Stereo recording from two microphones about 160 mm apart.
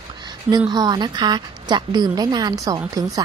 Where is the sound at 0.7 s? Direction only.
25° right (ahead or behind).